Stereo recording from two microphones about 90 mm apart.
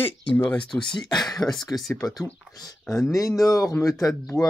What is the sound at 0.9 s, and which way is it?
Speech, 50° left (ahead or behind).